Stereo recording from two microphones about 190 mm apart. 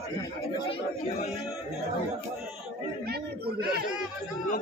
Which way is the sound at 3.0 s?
55° right (ahead or behind).